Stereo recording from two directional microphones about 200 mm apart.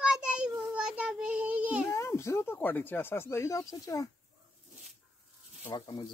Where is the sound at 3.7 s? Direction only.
15° left (ahead or behind).